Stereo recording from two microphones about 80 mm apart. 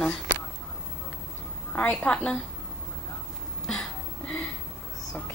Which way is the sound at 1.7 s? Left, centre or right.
Centre.